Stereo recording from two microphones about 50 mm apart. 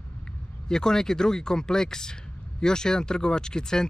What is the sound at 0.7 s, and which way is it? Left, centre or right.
Speech, centre.